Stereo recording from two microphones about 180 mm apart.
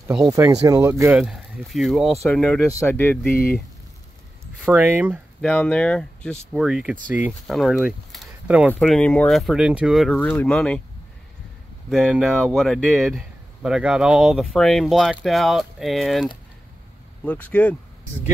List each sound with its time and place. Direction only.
0.1 s speech: 5° right (ahead or behind)
0.4 s speech: 20° right (ahead or behind)
1.1 s speech: 5° right (ahead or behind)
4.6 s speech: 10° right (ahead or behind)
5.4 s speech: 5° left (ahead or behind)
8.7 s speech: 5° left (ahead or behind)
11.9 s speech: centre (ahead or behind)